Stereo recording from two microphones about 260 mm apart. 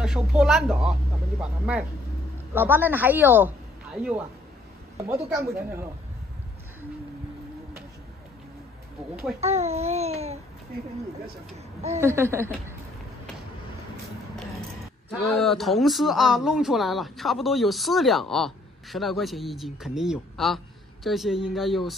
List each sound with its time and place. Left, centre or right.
0.0 s speech: centre
9.4 s babbling: right
12.0 s speech: centre
15.4 s speech: centre